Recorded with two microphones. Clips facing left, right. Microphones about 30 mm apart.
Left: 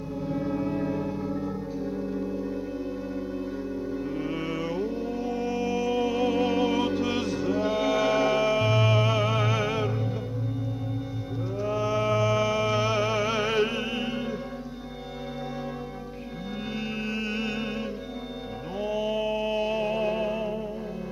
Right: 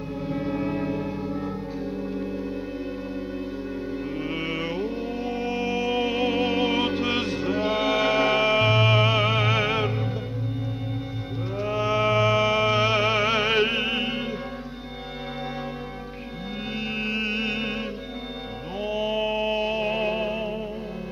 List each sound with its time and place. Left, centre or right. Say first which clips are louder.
0.3 s music: right 1 dB; right
4.2 s music: right 2 dB; right
11.6 s music: right 3 dB; right
16.7 s music: right 4 dB; right